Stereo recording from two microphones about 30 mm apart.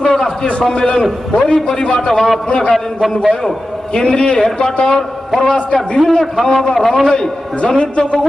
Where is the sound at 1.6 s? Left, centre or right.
Left.